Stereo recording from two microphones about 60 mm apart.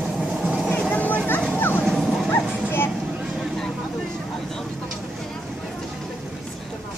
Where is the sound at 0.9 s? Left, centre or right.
Left.